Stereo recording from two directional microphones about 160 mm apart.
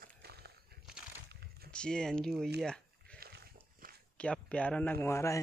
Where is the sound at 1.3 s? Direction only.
90° right.